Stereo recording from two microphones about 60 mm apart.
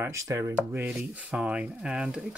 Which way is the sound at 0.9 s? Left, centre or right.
Centre.